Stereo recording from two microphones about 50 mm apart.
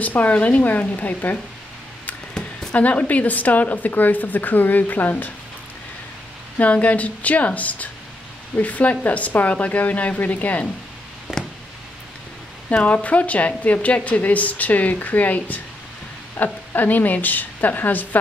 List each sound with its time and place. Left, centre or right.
0.0 s a woman's voice: left
2.7 s a woman's voice: left
6.6 s a woman's voice: left
11.3 s a sound: centre
12.6 s a woman's voice: left